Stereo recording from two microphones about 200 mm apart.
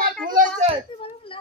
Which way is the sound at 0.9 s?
25° left (ahead or behind).